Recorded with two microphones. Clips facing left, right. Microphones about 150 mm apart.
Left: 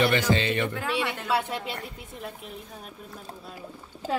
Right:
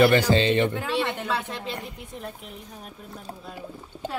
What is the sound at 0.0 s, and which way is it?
Speech, 35° right (ahead or behind).